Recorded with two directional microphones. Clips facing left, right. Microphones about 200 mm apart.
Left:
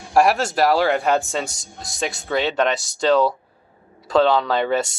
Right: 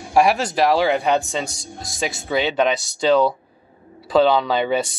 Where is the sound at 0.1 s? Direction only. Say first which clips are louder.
Even; centre (ahead or behind).